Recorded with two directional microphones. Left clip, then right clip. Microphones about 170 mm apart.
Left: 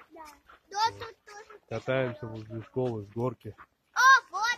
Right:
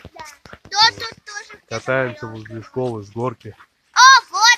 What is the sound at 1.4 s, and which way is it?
Speech, 20° right (ahead or behind).